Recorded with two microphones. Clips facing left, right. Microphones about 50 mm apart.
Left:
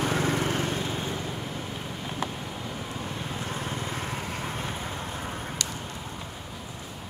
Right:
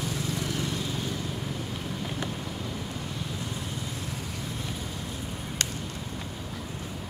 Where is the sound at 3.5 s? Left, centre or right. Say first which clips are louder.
Left 3 dB; left.